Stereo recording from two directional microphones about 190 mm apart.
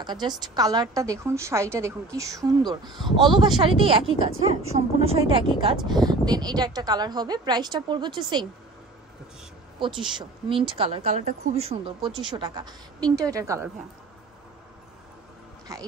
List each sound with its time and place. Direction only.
0.0 s a woman's voice: 20° right (ahead or behind)
2.8 s speech: centre (ahead or behind)
3.2 s a woman's voice: 25° right (ahead or behind)
9.8 s a woman's voice: 25° right (ahead or behind)
15.7 s a woman's voice: 15° right (ahead or behind)